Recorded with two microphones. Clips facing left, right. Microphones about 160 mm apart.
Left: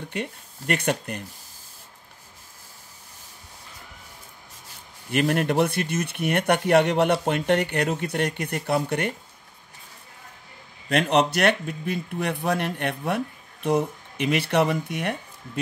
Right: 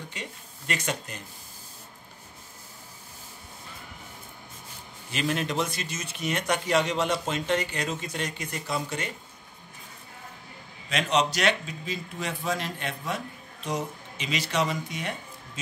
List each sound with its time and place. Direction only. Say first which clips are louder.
0.1 s a man's voice: left 9 dB; 60° left (ahead or behind)
5.1 s a man's voice: left 6 dB; 60° left (ahead or behind)
10.9 s a man's voice: left 5 dB; 55° left (ahead or behind)